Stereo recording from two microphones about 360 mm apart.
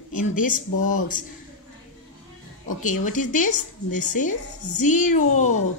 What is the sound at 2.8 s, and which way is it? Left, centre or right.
A woman's voice, left.